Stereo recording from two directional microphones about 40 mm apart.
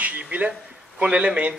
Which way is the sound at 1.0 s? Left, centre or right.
Right.